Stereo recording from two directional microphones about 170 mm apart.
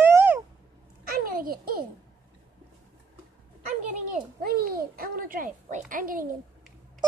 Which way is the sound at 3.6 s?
45° right (ahead or behind).